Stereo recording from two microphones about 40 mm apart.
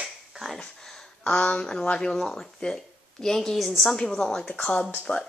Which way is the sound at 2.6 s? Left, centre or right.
Centre.